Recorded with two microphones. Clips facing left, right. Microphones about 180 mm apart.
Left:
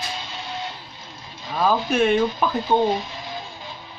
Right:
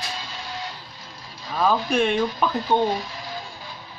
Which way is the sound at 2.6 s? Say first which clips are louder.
Left 3 dB; 20° left (ahead or behind).